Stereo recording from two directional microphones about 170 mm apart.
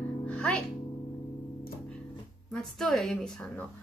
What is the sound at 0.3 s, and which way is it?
Music, 10° left (ahead or behind).